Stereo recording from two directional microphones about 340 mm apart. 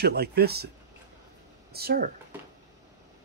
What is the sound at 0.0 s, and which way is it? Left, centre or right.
Speech, right.